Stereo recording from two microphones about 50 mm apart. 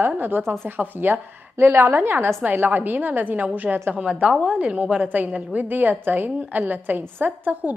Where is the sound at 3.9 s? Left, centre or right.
Centre.